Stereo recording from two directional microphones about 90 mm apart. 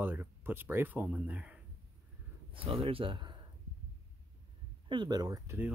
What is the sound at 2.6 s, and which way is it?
Speech, 90° right.